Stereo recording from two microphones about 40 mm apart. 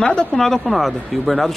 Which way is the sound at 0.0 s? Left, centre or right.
Left.